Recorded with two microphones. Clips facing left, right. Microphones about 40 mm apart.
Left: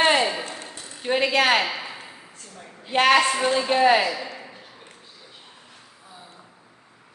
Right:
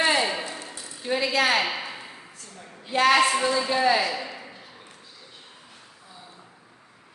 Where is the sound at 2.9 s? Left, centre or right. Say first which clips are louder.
Left 1 dB; left.